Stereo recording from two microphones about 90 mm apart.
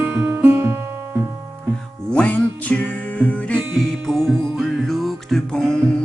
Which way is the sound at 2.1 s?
15° left (ahead or behind).